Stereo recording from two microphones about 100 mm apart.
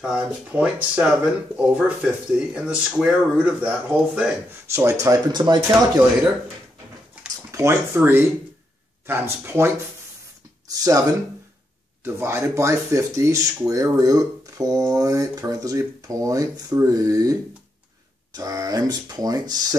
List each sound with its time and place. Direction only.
0.0 s speech: 10° right (ahead or behind)
4.7 s speech: 30° right (ahead or behind)
7.5 s speech: 30° right (ahead or behind)
10.7 s speech: 35° right (ahead or behind)